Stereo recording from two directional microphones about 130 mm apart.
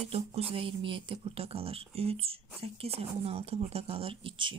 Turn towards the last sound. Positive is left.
turn(degrees=-40)  # may be behind; listen again after turning